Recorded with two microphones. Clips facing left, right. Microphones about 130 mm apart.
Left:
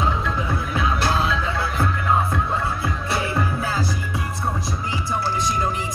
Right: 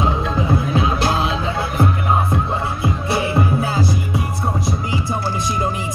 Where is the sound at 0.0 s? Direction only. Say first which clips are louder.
Right 4 dB; 30° right (ahead or behind).